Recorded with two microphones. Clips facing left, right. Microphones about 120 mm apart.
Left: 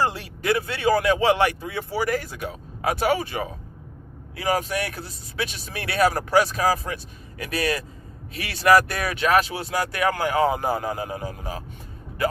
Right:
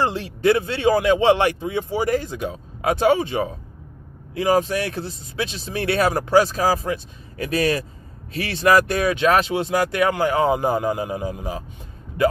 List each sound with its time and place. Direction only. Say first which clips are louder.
0.0 s speech: right 5 dB; 30° right (ahead or behind)